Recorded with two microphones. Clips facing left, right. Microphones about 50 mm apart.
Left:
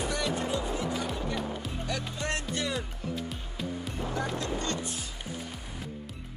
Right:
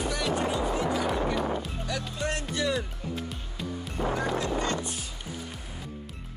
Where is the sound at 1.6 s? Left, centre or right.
Centre.